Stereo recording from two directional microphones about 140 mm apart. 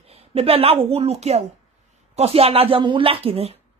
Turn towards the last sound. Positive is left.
turn(degrees=-45)  # may be behind; listen again after turning